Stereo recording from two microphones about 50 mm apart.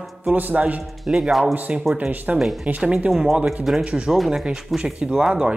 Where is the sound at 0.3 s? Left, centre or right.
Right.